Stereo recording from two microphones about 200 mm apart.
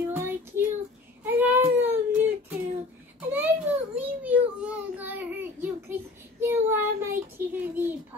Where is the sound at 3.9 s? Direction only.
5° right (ahead or behind).